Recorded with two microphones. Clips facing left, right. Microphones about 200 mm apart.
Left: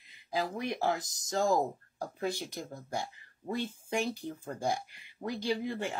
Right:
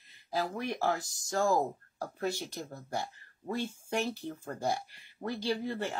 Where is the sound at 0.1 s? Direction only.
15° left (ahead or behind).